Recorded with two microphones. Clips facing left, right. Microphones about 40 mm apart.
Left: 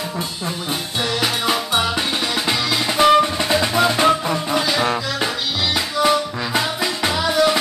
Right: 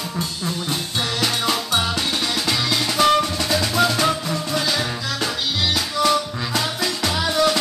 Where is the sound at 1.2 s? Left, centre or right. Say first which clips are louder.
Left 1 dB; centre.